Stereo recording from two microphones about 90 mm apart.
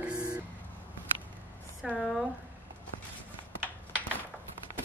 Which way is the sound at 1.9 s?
Centre (ahead or behind).